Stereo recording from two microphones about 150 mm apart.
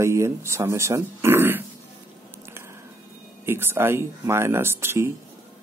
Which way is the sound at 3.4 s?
15° right (ahead or behind).